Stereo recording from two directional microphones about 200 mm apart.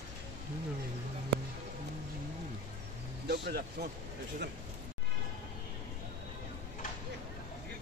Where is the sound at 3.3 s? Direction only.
55° right (ahead or behind).